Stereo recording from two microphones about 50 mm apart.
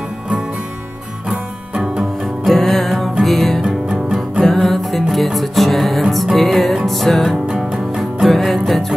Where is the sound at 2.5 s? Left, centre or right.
Centre.